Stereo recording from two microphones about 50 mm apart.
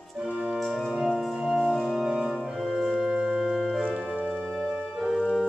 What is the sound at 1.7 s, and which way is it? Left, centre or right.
Organ, centre.